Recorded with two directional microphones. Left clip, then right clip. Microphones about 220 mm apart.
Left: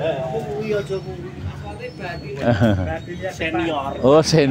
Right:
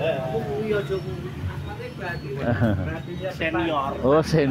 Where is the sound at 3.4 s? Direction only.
35° left (ahead or behind).